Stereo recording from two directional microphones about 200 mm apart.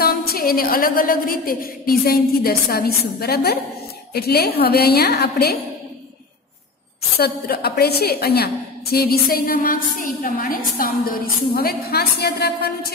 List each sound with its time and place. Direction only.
0.0 s a woman's voice: 50° left (ahead or behind)
7.2 s a woman's voice: 50° left (ahead or behind)